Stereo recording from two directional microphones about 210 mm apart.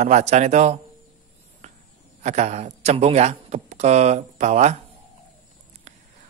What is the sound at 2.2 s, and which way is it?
A man's voice, 30° right (ahead or behind).